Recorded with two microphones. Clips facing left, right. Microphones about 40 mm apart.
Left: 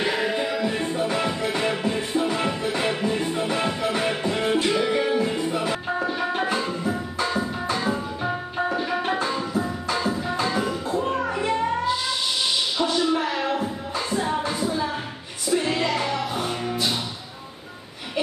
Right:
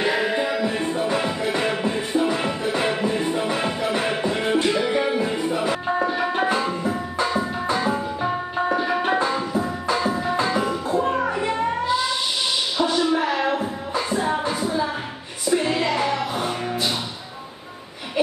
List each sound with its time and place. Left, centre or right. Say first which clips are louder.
0.0 s music: right 2 dB; centre
10.4 s music: right 2 dB; centre
12.7 s music: right 3 dB; centre